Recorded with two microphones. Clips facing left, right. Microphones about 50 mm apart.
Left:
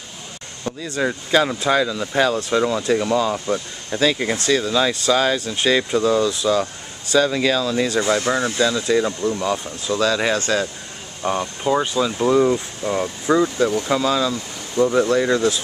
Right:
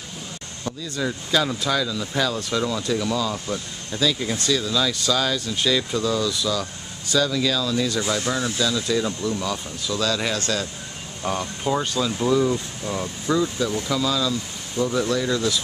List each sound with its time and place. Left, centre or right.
0.9 s speech: left
4.0 s speech: left
11.2 s speech: centre